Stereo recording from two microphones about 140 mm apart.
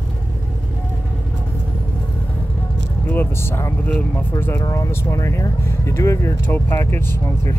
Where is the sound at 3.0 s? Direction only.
15° left (ahead or behind).